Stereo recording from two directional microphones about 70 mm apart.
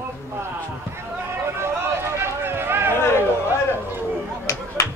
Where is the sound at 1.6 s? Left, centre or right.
Right.